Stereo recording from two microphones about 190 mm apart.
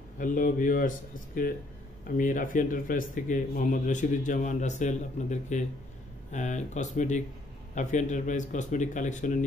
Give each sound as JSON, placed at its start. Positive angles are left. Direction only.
{"t": 0.2, "sound": "a man's voice", "side_deg": 45}